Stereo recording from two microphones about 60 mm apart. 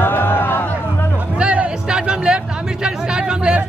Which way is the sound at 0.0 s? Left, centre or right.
Left.